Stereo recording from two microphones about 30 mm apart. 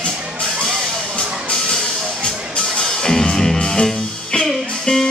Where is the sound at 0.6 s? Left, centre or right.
Centre.